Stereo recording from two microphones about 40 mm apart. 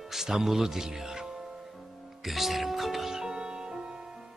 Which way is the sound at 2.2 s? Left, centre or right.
Centre.